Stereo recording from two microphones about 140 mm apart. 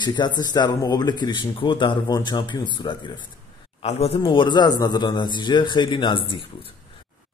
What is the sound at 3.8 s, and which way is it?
Speech, 45° left (ahead or behind).